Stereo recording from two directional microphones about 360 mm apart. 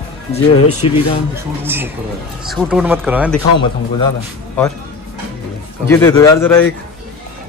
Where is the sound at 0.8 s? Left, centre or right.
Centre.